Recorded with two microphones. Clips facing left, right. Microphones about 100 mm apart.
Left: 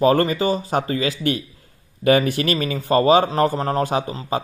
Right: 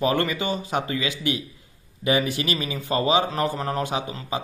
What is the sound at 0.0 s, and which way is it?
Speech, 40° left (ahead or behind).